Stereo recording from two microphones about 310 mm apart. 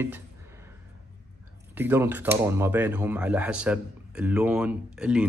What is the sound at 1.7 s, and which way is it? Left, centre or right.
Speech, centre.